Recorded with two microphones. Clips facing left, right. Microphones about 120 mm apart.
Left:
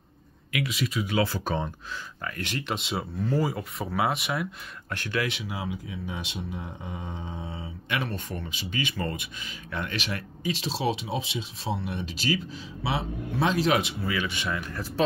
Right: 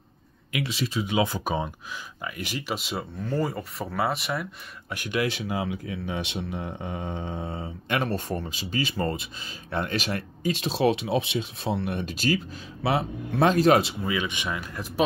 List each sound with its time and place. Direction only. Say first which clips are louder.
0.5 s speech: even; 30° right (ahead or behind); by 4.9 s centre (ahead or behind)
4.9 s speech: right 1 dB; 15° right (ahead or behind)
5.4 s speech: right 4 dB; 55° right (ahead or behind); by 13.9 s 35° right (ahead or behind)
14.0 s speech: right 1 dB; 20° right (ahead or behind)